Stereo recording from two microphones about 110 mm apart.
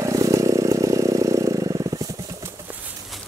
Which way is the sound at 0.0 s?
30° right (ahead or behind).